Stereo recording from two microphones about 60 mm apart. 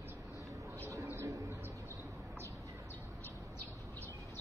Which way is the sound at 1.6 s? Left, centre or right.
Right.